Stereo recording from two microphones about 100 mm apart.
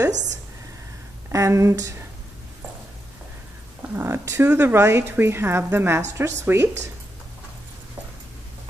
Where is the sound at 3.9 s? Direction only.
25° right (ahead or behind).